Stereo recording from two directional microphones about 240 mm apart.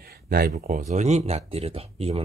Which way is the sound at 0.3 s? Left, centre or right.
Right.